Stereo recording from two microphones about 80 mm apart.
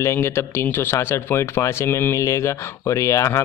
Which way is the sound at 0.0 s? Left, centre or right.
Left.